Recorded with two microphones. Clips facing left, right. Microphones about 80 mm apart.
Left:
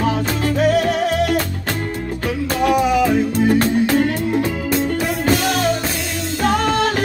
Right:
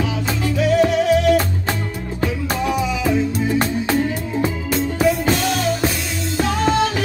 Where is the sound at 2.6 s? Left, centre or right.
Left.